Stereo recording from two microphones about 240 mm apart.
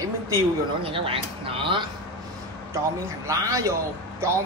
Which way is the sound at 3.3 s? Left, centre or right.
Centre.